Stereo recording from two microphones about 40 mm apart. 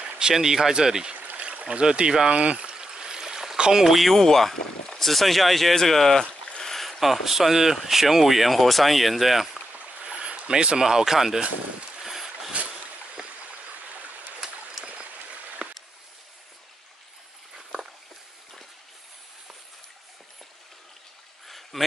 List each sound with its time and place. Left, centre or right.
0.3 s speech: centre
1.1 s stream: right
1.4 s stream: right
3.8 s speech: centre
4.1 s speech: centre
6.2 s boat: left
6.6 s speech: centre
9.7 s a sound: right; by 11.4 s centre
12.0 s boat: centre
12.5 s boat: right
13.1 s stream: right
15.6 s a sound: right
21.5 s a sound: centre